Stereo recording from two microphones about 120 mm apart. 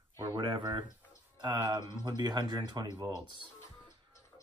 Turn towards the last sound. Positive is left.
turn(degrees=-30)  # may be behind; listen again after turning